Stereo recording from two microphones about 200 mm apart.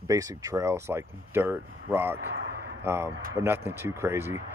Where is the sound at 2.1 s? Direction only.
65° right (ahead or behind).